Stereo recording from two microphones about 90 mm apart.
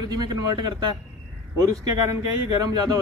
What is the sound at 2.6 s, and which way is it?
Speech, 50° right (ahead or behind).